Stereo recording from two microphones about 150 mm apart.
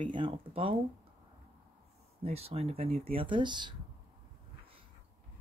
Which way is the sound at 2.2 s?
40° right (ahead or behind).